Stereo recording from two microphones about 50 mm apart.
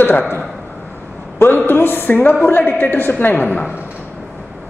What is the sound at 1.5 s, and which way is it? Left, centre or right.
A man's voice, left.